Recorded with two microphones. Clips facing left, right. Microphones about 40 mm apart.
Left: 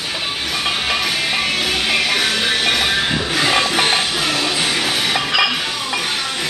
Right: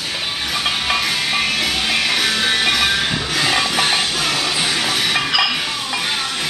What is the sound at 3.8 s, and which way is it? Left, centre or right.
Music, centre.